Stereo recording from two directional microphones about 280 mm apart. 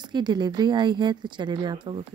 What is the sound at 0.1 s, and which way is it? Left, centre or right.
A woman's voice, centre.